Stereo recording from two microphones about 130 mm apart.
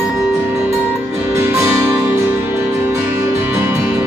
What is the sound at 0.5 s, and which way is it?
Music, 15° right (ahead or behind).